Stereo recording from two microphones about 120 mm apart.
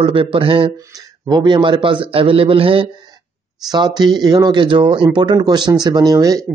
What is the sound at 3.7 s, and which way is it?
Speech, 35° right (ahead or behind).